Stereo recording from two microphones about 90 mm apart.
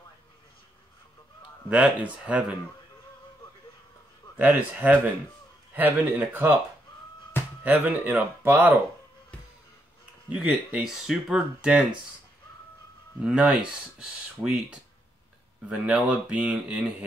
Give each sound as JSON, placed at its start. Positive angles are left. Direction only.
{"t": 1.7, "sound": "speech", "side_deg": -15}
{"t": 4.4, "sound": "speech", "side_deg": -20}
{"t": 7.6, "sound": "speech", "side_deg": -20}
{"t": 10.3, "sound": "speech", "side_deg": -10}
{"t": 13.2, "sound": "speech", "side_deg": -10}